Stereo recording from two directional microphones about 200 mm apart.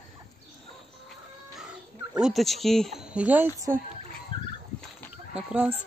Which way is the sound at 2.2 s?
Centre (ahead or behind).